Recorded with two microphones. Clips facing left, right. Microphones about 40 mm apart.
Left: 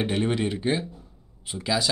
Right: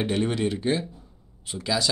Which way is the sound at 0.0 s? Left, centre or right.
Centre.